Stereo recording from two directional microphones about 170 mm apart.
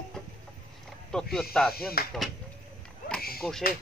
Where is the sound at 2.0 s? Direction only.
65° left (ahead or behind).